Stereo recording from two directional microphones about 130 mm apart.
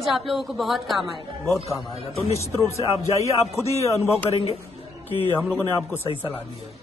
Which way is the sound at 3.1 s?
25° left (ahead or behind).